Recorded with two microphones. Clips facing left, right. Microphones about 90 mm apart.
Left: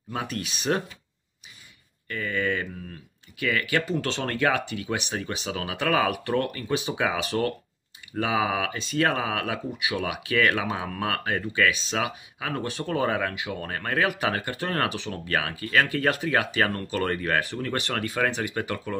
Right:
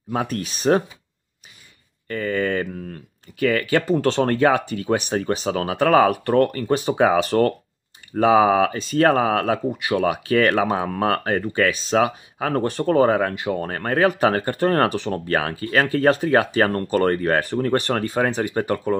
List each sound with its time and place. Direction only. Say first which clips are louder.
0.1 s speech: right 7 dB; 35° right (ahead or behind)
2.0 s speech: right 5 dB; 40° right (ahead or behind)
10.1 s speech: right 6 dB; 40° right (ahead or behind)